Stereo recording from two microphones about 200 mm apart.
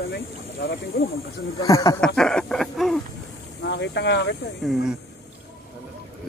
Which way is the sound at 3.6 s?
55° left (ahead or behind).